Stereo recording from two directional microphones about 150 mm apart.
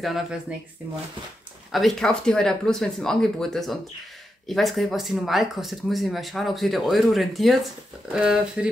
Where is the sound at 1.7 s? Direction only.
5° left (ahead or behind).